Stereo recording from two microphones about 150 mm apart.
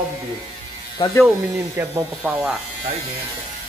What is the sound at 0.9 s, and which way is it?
Speech, 25° left (ahead or behind).